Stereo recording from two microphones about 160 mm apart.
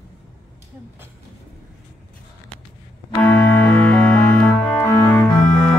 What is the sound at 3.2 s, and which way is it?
Music, 10° left (ahead or behind).